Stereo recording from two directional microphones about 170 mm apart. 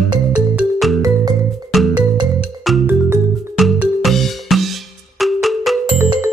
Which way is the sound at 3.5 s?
Centre (ahead or behind).